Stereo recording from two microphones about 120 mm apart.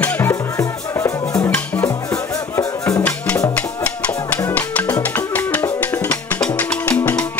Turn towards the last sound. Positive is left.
turn(degrees=15)  # may be behind; listen again after turning